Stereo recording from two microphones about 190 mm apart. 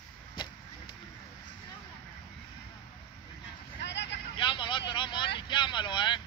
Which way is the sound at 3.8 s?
65° left (ahead or behind).